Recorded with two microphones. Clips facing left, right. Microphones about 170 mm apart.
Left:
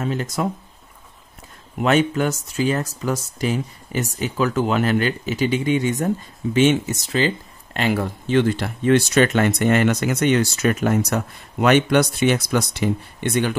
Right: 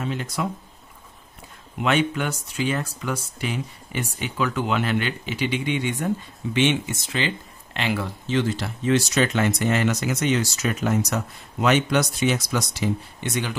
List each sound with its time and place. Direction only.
0.0 s speech: 45° left (ahead or behind)
1.8 s speech: 40° left (ahead or behind)